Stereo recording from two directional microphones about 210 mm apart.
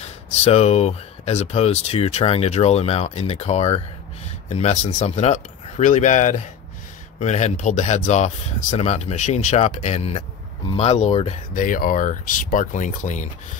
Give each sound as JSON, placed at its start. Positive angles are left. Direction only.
{"t": 0.0, "sound": "speech", "side_deg": 30}
{"t": 11.5, "sound": "speech", "side_deg": 40}